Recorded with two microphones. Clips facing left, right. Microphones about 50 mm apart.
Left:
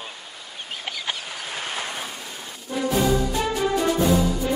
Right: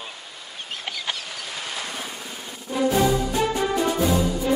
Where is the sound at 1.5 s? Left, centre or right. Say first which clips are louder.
Left 2 dB; left.